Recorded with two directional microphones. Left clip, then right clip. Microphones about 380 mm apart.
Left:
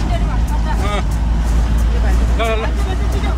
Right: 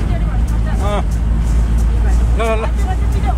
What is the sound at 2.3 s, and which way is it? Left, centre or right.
Vehicle, centre.